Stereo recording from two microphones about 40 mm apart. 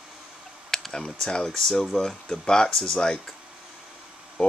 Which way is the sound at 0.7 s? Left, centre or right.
Centre.